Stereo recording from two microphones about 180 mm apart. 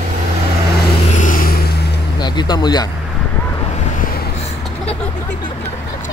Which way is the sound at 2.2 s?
25° left (ahead or behind).